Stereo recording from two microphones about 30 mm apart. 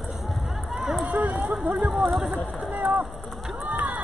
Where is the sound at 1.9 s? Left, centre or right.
Centre.